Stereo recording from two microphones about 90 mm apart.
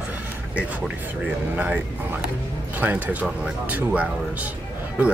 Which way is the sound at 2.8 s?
20° right (ahead or behind).